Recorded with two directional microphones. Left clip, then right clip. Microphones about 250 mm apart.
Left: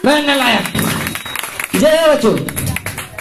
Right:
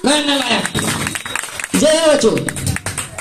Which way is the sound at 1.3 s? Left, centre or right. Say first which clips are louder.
Even; right.